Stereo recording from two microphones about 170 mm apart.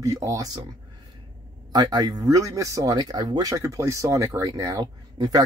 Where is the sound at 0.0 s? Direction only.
20° right (ahead or behind).